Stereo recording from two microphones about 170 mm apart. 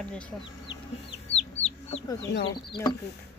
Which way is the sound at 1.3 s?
35° left (ahead or behind).